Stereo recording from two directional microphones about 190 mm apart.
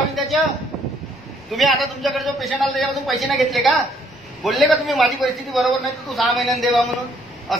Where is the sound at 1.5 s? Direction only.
Centre (ahead or behind).